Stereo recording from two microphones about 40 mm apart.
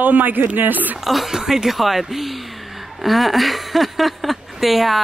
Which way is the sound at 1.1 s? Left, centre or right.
Centre.